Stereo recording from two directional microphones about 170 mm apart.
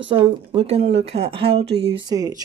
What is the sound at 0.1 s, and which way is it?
A woman's voice, 35° right (ahead or behind).